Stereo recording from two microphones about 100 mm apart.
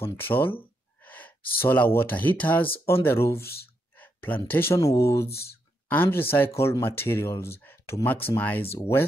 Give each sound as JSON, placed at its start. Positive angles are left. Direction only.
{"t": 0.0, "sound": "speech", "side_deg": 20}
{"t": 4.7, "sound": "speech", "side_deg": 30}